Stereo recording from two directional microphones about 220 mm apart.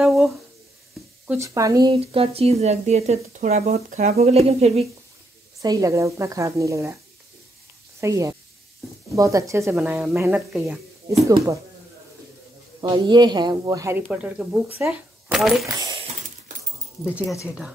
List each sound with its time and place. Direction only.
0.0 s a sound: centre (ahead or behind)
1.2 s speech: 10° right (ahead or behind); by 4.8 s 30° right (ahead or behind)
5.6 s speech: 15° right (ahead or behind)
8.0 s speech: 15° right (ahead or behind)
12.8 s speech: 20° right (ahead or behind); by 15.7 s centre (ahead or behind)
15.8 s a sound: 25° right (ahead or behind)